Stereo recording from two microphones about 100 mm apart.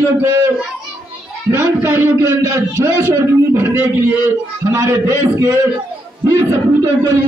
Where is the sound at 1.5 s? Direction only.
25° right (ahead or behind).